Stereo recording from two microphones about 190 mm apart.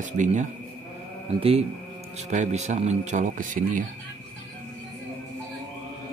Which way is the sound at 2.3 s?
35° right (ahead or behind).